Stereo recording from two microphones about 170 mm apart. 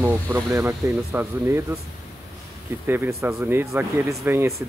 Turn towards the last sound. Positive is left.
turn(degrees=-15)  # may be behind; listen again after turning